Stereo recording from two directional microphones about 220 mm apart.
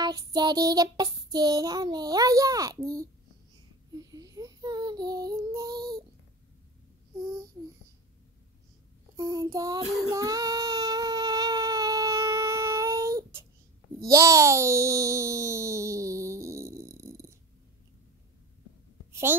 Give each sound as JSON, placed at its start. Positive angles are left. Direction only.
{"t": 0.0, "sound": "child singing", "side_deg": -15}
{"t": 7.2, "sound": "babbling", "side_deg": -15}
{"t": 9.1, "sound": "child singing", "side_deg": -15}
{"t": 13.9, "sound": "a child's voice", "side_deg": -15}